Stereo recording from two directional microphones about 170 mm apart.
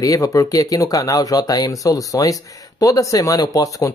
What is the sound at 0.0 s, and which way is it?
Speech, 20° left (ahead or behind).